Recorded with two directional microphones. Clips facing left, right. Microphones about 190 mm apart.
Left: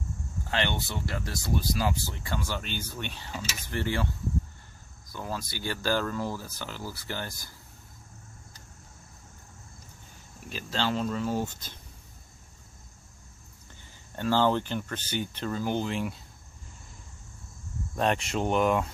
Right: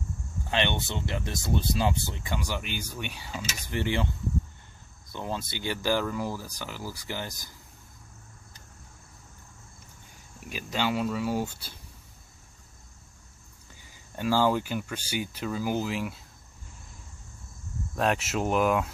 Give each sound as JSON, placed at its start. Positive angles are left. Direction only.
{"t": 0.5, "sound": "speech", "side_deg": -20}
{"t": 5.1, "sound": "speech", "side_deg": -25}
{"t": 10.5, "sound": "speech", "side_deg": -10}
{"t": 14.1, "sound": "speech", "side_deg": -10}
{"t": 17.9, "sound": "speech", "side_deg": -5}